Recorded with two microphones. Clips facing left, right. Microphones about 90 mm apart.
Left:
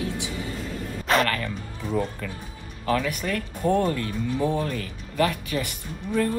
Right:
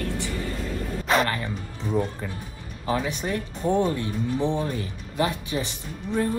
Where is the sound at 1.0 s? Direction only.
Centre (ahead or behind).